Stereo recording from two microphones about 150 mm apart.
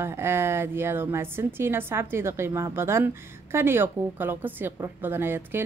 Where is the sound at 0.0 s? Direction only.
15° right (ahead or behind).